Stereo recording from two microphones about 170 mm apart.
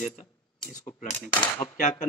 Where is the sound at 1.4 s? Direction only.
25° left (ahead or behind).